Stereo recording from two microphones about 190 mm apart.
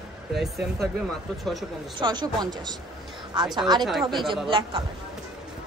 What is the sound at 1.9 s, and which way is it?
A woman's voice, 25° right (ahead or behind).